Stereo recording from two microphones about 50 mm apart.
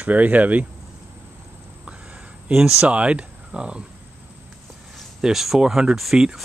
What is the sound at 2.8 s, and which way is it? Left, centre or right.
Speech, right.